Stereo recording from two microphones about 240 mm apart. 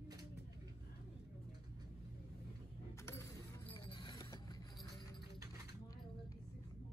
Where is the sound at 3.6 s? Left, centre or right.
Left.